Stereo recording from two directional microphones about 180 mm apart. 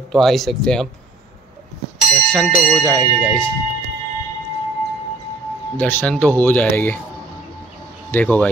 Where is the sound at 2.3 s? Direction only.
5° left (ahead or behind).